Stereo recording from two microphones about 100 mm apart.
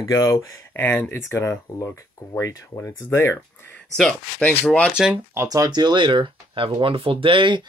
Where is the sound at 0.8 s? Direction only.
15° left (ahead or behind).